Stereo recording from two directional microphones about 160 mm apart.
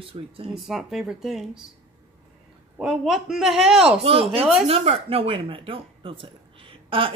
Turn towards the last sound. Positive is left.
turn(degrees=-35)  # may be behind; listen again after turning